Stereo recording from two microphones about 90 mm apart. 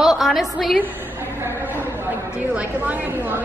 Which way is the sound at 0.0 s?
5° right (ahead or behind).